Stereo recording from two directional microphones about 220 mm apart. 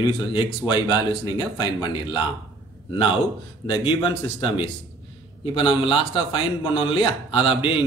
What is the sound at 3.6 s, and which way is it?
Speech, 25° left (ahead or behind).